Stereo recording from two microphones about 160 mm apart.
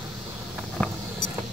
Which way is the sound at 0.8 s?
5° left (ahead or behind).